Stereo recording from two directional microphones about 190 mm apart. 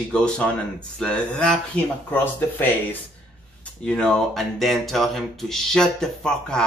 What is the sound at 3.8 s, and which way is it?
Speech, 5° left (ahead or behind).